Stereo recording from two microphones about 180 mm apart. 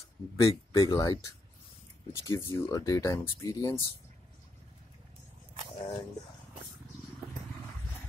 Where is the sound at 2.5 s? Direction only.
20° left (ahead or behind).